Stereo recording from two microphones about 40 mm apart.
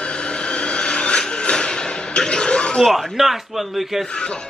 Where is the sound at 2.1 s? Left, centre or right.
Left.